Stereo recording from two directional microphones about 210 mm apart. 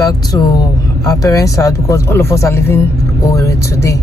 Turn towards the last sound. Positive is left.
turn(degrees=15)  # may be behind; listen again after turning